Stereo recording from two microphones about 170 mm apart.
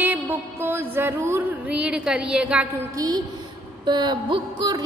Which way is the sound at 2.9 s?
20° right (ahead or behind).